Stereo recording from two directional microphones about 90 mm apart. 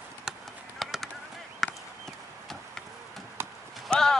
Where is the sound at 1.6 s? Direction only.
5° left (ahead or behind).